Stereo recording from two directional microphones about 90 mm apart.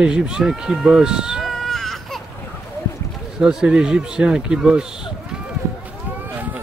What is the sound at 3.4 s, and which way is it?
Speech, 5° right (ahead or behind).